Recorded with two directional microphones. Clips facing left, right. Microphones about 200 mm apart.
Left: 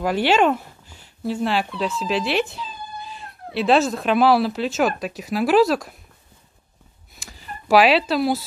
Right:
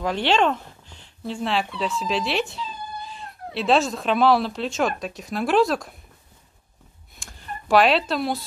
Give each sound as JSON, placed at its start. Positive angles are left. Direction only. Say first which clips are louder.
{"t": 0.0, "sound": "speech", "louder": "left 3 dB", "side_deg": 5}
{"t": 7.2, "sound": "speech", "louder": "right 1 dB", "side_deg": 0}